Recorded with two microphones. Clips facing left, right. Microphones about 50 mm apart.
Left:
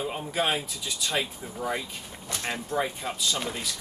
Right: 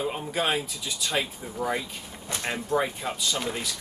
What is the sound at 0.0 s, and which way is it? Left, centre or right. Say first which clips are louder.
Speech: right 1 dB; centre.